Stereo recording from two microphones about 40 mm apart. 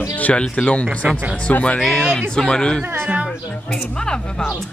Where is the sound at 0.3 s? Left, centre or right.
Left.